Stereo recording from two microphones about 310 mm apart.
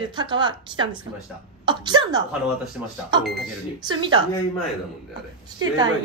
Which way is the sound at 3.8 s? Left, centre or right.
Centre.